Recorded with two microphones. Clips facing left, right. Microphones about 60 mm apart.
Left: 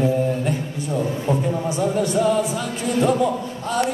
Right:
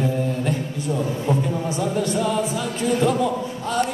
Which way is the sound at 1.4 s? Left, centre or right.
Centre.